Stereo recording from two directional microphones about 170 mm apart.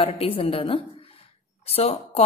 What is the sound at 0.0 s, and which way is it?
Speech, 35° left (ahead or behind).